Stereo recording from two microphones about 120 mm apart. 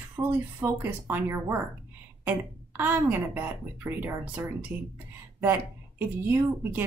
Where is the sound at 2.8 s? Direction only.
15° right (ahead or behind).